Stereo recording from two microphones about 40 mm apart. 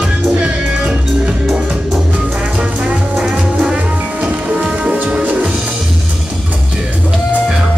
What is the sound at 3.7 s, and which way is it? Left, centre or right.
Music, right.